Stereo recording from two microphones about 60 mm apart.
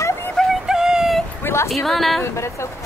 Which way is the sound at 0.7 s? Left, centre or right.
Centre.